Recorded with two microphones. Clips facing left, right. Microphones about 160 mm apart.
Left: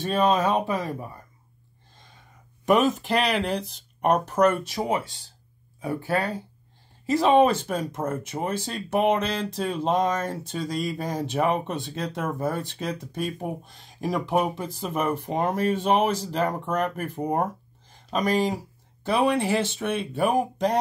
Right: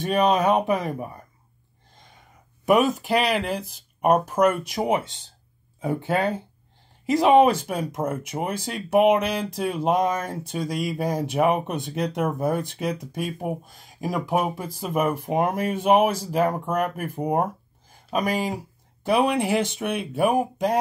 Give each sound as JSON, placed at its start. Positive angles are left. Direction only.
{"t": 0.0, "sound": "speech", "side_deg": -15}
{"t": 2.6, "sound": "speech", "side_deg": -5}